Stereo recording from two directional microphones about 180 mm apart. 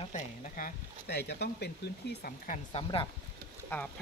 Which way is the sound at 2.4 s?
45° left (ahead or behind).